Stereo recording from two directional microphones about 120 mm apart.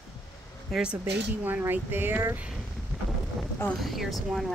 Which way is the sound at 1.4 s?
15° right (ahead or behind).